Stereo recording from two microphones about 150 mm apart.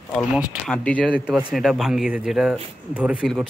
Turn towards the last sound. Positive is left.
turn(degrees=-5)  # may be behind; listen again after turning